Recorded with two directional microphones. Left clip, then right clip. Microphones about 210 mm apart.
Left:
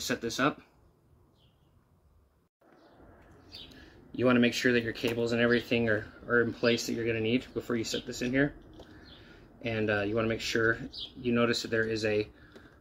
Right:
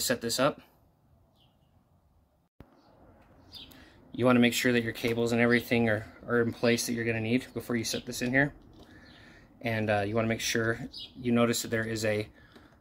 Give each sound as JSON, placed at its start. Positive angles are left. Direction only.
{"t": 0.0, "sound": "speech", "side_deg": -55}
{"t": 4.2, "sound": "speech", "side_deg": -55}